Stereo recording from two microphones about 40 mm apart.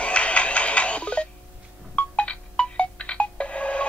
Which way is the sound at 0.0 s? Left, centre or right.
Left.